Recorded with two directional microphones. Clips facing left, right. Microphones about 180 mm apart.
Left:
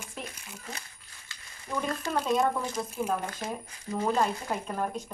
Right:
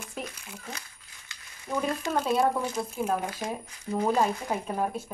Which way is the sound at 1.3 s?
10° right (ahead or behind).